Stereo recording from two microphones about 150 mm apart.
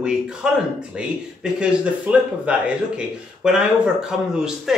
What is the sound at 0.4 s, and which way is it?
Speech, 5° right (ahead or behind).